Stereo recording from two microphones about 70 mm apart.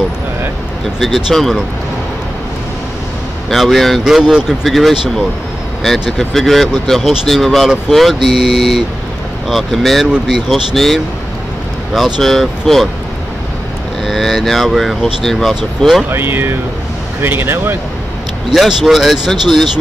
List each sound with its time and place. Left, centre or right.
0.9 s speech: centre
3.4 s speech: centre
14.0 s speech: centre
16.1 s speech: right
18.5 s speech: centre